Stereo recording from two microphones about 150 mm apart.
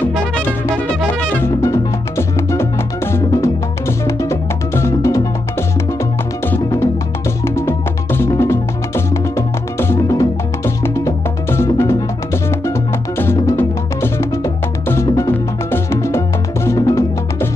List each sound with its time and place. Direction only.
1.2 s music: 15° left (ahead or behind)
6.4 s music: 15° left (ahead or behind)
13.2 s music: 15° left (ahead or behind)
15.0 s music: 30° left (ahead or behind)
15.7 s music: 15° left (ahead or behind)